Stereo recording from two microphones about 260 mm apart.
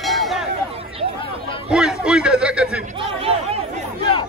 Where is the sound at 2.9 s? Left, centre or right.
Centre.